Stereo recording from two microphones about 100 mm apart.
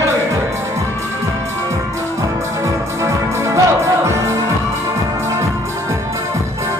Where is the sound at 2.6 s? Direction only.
30° right (ahead or behind).